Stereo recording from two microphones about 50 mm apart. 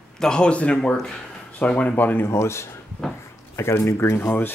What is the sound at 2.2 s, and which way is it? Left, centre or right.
Speech, left.